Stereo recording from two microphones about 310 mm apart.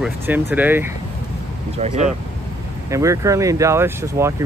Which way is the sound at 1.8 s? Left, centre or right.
Right.